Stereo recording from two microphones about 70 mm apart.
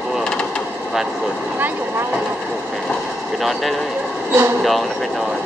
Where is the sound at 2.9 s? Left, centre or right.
Centre.